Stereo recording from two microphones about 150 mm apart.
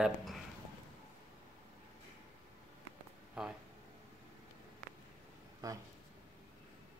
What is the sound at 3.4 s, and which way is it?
Speech, 5° right (ahead or behind).